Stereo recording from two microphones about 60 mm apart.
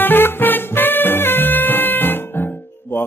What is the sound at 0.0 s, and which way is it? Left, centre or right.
Music, left.